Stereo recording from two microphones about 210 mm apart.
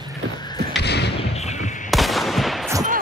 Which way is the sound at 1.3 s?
35° left (ahead or behind).